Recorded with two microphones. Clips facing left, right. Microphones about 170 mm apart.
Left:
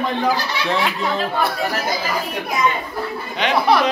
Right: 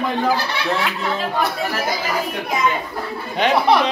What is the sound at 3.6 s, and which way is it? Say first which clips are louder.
Speech: left 2 dB; 25° right (ahead or behind).